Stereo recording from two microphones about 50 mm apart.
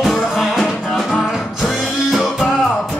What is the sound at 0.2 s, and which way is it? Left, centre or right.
Music, centre.